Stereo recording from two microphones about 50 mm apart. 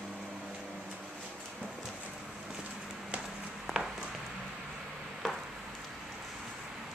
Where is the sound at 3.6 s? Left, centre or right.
Centre.